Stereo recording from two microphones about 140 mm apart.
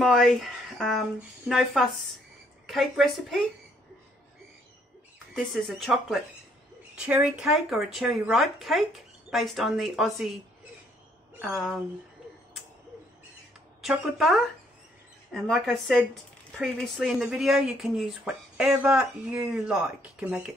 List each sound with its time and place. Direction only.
0.0 s speech: centre (ahead or behind)
5.3 s speech: centre (ahead or behind)
11.4 s speech: centre (ahead or behind)
13.8 s speech: centre (ahead or behind)